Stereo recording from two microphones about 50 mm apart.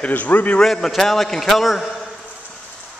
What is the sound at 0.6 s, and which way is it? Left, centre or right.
A man's voice, centre.